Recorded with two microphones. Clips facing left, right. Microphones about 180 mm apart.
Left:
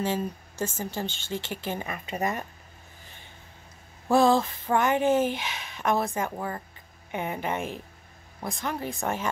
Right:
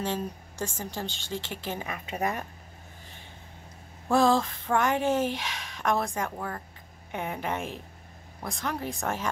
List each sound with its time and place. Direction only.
0.0 s speech: 5° left (ahead or behind)
4.1 s speech: 5° left (ahead or behind)